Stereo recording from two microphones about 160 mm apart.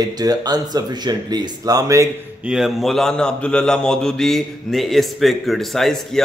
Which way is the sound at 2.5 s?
Centre (ahead or behind).